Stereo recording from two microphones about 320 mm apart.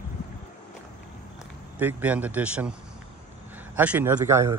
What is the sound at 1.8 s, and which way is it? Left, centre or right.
Speech, centre.